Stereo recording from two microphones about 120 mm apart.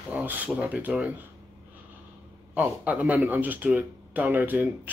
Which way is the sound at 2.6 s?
10° right (ahead or behind).